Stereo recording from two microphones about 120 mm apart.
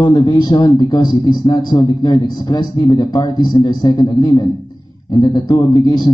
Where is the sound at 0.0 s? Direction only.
35° left (ahead or behind).